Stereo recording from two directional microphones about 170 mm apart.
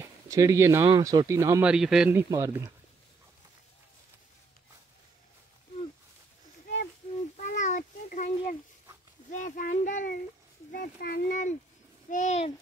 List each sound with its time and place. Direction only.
0.0 s speech: 20° right (ahead or behind)
1.7 s speech: 5° right (ahead or behind)
2.1 s speech: 20° right (ahead or behind)
7.3 s a sound: 45° left (ahead or behind)
9.3 s a child's voice: 50° left (ahead or behind)